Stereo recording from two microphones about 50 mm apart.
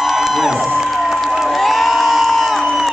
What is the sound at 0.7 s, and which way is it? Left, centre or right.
Crowd, centre.